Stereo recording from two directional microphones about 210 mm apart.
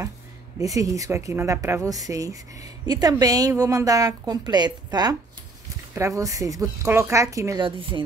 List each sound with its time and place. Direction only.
0.6 s a woman's voice: 15° right (ahead or behind)